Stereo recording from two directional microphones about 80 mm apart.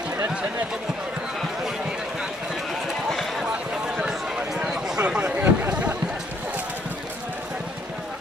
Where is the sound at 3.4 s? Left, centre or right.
Centre.